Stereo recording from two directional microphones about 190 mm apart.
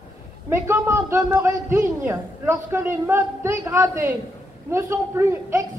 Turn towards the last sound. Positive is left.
turn(degrees=-15)  # may be behind; listen again after turning